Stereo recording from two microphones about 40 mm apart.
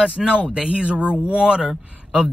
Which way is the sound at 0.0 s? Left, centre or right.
Right.